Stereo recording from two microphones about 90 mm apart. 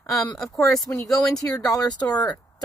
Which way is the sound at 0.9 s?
25° left (ahead or behind).